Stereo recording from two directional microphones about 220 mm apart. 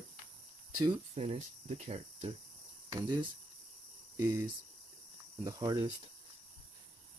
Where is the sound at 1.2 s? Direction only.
30° right (ahead or behind).